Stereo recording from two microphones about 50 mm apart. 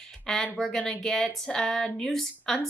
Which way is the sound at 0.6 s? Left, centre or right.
Centre.